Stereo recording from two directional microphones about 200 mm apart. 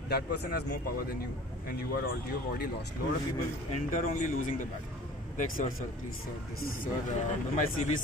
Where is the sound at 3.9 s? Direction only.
40° left (ahead or behind).